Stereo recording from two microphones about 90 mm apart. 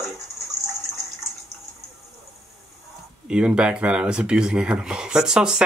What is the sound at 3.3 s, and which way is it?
Speech, 10° right (ahead or behind).